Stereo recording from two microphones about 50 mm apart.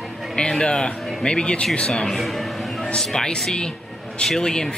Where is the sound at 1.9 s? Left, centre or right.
Centre.